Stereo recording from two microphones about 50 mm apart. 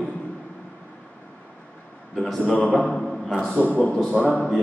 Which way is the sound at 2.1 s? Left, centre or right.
Centre.